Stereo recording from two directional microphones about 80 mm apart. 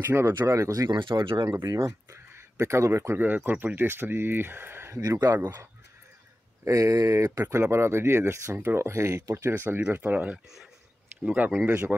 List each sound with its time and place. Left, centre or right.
0.0 s speech: right
0.5 s speech: right
0.9 s speech: right
1.5 s speech: right
5.2 s speech: right
7.7 s speech: right